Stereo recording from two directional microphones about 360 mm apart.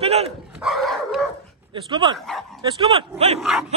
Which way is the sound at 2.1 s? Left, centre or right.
Centre.